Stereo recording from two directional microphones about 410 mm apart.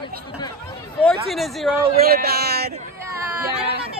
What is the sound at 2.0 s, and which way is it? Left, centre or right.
Speech, right.